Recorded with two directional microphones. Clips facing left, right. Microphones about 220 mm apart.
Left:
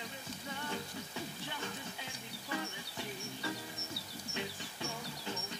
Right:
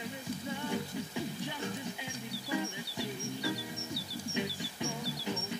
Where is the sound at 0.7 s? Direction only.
15° right (ahead or behind).